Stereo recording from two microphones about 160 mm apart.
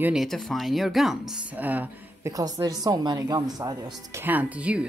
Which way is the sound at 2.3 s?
25° right (ahead or behind).